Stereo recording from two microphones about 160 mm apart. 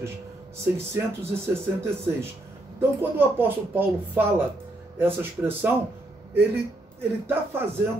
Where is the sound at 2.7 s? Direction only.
15° right (ahead or behind).